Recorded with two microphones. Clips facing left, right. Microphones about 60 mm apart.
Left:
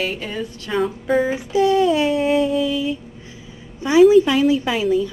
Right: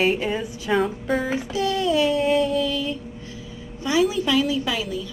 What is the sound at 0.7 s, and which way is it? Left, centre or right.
Music, centre.